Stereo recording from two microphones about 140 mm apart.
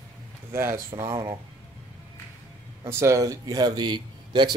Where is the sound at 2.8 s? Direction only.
20° right (ahead or behind).